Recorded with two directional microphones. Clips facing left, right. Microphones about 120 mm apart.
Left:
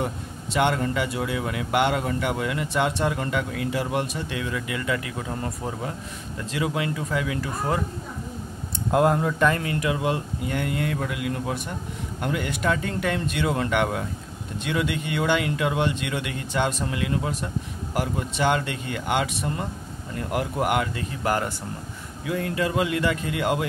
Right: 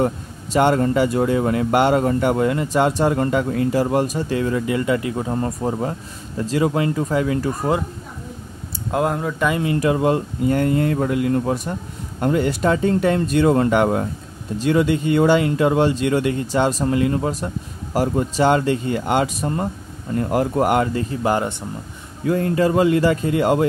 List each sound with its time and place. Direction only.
0.0 s speech: 40° right (ahead or behind)
8.9 s speech: centre (ahead or behind)
9.8 s speech: 40° right (ahead or behind); by 21.5 s 25° right (ahead or behind)
22.2 s speech: 40° right (ahead or behind)